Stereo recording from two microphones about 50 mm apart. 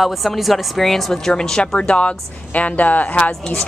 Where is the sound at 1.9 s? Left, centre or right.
Left.